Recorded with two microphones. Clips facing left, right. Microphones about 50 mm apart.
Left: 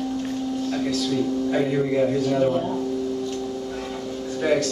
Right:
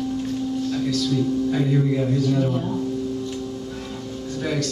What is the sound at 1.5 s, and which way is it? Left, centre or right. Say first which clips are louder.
A man's voice: even; centre.